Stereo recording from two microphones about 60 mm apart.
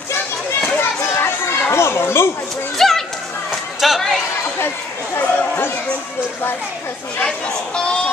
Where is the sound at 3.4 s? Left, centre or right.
Centre.